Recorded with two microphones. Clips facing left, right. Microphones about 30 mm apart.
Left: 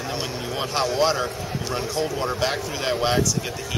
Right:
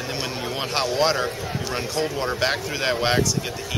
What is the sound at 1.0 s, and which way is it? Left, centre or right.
A man's voice, centre.